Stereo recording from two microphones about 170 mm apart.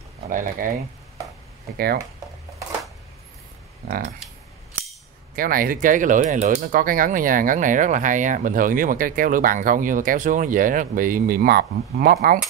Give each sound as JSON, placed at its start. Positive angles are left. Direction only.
{"t": 0.3, "sound": "speech", "side_deg": -50}
{"t": 3.8, "sound": "typing", "side_deg": -60}
{"t": 5.3, "sound": "speech", "side_deg": -60}